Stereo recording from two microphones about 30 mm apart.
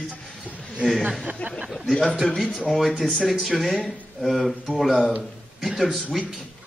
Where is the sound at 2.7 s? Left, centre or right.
Centre.